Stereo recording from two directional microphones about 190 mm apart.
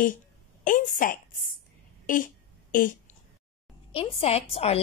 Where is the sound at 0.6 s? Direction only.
45° left (ahead or behind).